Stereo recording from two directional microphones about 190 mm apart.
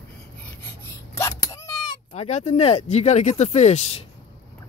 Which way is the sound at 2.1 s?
35° left (ahead or behind).